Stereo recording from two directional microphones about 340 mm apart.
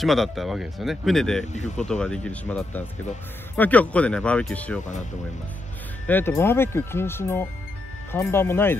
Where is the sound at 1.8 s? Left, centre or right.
Centre.